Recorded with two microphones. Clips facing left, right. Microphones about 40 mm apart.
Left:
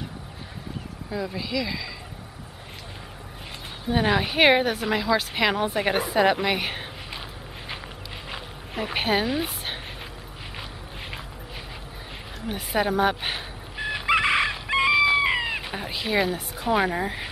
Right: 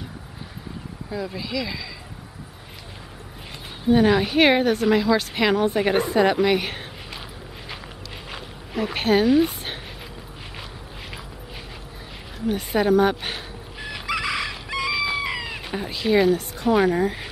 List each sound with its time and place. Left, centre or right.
1.1 s speech: centre
3.9 s speech: centre
8.3 s a sound: centre
12.4 s fowl: centre
14.0 s chicken: left
15.0 s chicken: centre
15.2 s chicken: left
15.6 s speech: centre